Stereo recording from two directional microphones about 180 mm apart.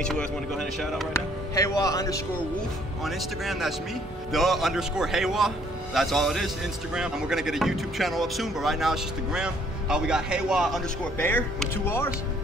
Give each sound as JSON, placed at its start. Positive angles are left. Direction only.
{"t": 0.0, "sound": "a man's voice", "side_deg": 5}
{"t": 1.1, "sound": "speech", "side_deg": 20}
{"t": 3.1, "sound": "a man's voice", "side_deg": 0}
{"t": 11.1, "sound": "speech", "side_deg": 10}